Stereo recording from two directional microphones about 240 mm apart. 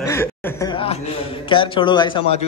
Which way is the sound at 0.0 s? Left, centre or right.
Centre.